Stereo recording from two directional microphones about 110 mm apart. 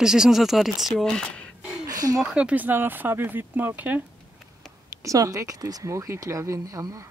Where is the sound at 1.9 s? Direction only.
35° right (ahead or behind).